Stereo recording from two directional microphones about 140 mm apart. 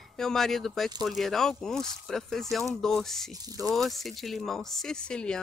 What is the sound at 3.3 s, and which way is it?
Speech, 25° right (ahead or behind).